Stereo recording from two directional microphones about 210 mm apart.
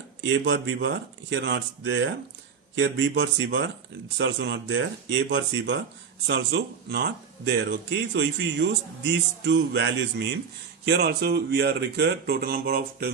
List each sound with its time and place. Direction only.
0.4 s speech: 60° right (ahead or behind)